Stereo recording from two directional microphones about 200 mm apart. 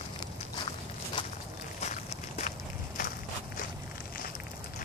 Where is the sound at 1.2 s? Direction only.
25° left (ahead or behind).